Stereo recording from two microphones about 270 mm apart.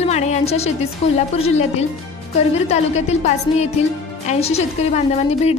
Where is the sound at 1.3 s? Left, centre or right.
Left.